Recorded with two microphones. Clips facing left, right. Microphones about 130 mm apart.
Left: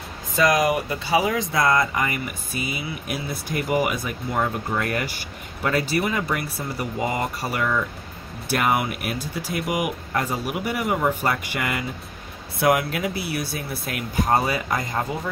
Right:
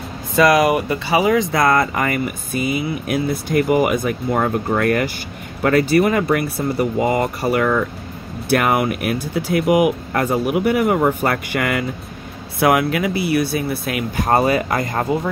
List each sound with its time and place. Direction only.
0.4 s speech: 70° right (ahead or behind)